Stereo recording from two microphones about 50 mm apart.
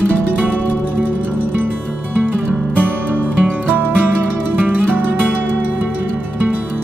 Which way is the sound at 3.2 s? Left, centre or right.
Right.